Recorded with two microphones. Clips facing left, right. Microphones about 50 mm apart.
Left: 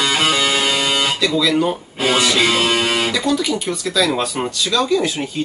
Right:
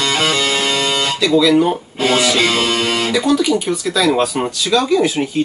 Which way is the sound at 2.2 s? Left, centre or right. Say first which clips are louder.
Right 1 dB; centre.